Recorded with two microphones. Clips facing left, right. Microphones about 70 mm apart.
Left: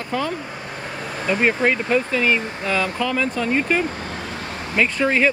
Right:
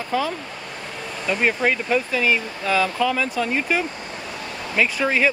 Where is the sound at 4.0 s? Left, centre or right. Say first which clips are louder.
Left 3 dB; left.